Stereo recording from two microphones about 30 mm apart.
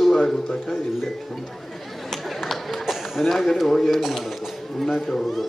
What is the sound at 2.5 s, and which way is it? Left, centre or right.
Run, centre.